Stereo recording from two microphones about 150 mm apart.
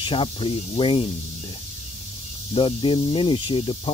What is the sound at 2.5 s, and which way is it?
Speech, 35° left (ahead or behind).